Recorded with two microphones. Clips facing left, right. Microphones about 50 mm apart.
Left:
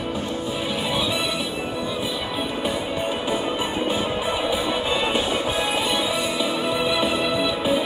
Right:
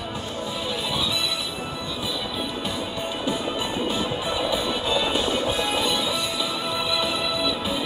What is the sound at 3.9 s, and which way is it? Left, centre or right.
Music, left.